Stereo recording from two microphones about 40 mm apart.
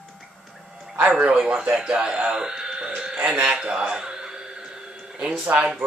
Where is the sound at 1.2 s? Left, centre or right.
Right.